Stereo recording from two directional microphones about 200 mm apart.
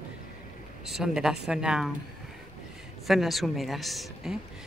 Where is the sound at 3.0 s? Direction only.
Centre (ahead or behind).